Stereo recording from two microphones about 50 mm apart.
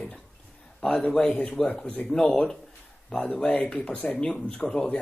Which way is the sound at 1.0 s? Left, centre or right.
Centre.